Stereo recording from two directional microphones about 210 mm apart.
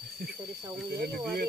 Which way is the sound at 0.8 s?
50° right (ahead or behind).